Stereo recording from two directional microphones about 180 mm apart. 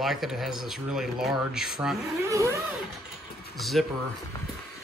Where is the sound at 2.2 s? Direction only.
15° right (ahead or behind).